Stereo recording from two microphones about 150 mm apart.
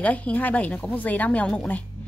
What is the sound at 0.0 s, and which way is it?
A woman's voice, 10° left (ahead or behind).